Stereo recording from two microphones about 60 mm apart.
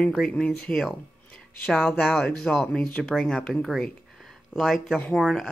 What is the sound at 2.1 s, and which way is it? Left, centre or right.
Speech, centre.